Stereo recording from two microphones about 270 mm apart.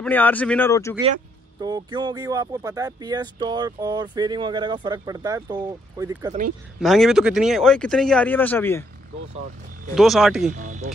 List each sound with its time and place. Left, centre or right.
0.0 s speech: centre
1.6 s speech: centre
6.8 s speech: centre
9.9 s speech: centre
10.6 s speech: right